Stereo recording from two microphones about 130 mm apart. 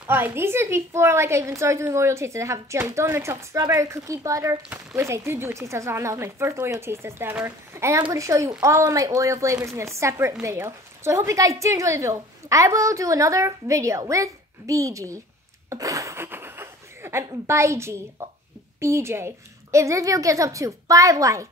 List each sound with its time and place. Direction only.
0.0 s a woman's voice: 15° right (ahead or behind)
15.7 s a sound: 25° right (ahead or behind)
18.2 s a woman's voice: 20° right (ahead or behind)